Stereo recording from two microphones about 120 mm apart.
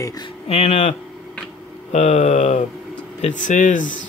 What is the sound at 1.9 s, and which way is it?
Speech, 70° left (ahead or behind).